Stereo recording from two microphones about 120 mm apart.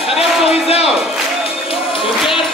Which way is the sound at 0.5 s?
55° left (ahead or behind).